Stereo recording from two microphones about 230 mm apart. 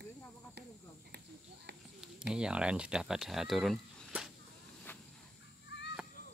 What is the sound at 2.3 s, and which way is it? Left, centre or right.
Speech, centre.